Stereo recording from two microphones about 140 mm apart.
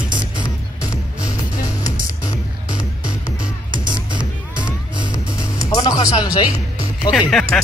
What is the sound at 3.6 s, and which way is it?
Music, 35° right (ahead or behind).